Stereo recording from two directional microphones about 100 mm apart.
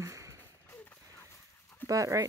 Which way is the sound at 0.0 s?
30° right (ahead or behind).